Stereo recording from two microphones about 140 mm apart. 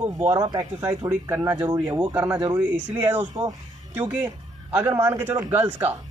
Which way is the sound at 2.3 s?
25° right (ahead or behind).